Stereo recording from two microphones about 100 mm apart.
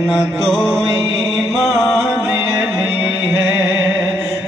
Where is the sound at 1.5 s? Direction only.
5° left (ahead or behind).